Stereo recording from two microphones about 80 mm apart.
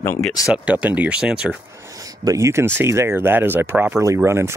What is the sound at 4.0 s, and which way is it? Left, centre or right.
Speech, right.